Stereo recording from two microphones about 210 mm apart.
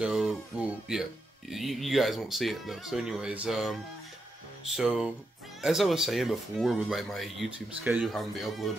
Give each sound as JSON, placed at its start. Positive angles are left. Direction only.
{"t": 0.0, "sound": "speech", "side_deg": -5}